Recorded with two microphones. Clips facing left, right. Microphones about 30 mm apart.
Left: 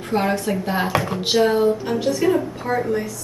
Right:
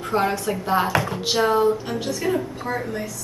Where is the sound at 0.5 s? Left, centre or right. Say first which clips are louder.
Even; centre.